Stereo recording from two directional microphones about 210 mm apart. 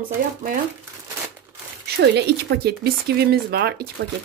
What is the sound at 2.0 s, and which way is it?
Speech, 50° right (ahead or behind).